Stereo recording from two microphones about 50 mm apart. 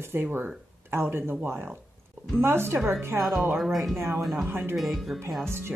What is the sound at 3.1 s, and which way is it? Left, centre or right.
Speech, right.